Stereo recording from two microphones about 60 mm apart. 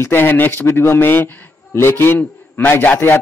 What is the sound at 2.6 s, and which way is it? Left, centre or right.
Speech, left.